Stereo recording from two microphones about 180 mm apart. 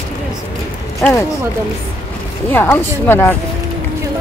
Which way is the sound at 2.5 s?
10° left (ahead or behind).